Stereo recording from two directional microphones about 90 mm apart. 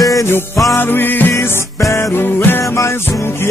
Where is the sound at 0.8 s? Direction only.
25° left (ahead or behind).